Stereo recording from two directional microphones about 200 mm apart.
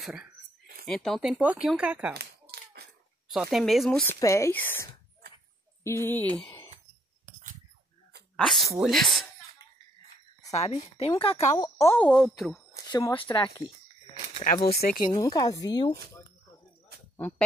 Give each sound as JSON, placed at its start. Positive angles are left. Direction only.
{"t": 0.0, "sound": "speech", "side_deg": -5}
{"t": 2.5, "sound": "hands", "side_deg": -55}
{"t": 3.3, "sound": "speech", "side_deg": 0}
{"t": 4.1, "sound": "speech", "side_deg": 15}
{"t": 5.9, "sound": "speech", "side_deg": 10}
{"t": 8.4, "sound": "speech", "side_deg": 0}
{"t": 10.4, "sound": "a woman's voice", "side_deg": 35}
{"t": 11.5, "sound": "speech", "side_deg": 15}
{"t": 12.9, "sound": "speech", "side_deg": 15}
{"t": 14.4, "sound": "speech", "side_deg": 45}
{"t": 15.0, "sound": "speech", "side_deg": 20}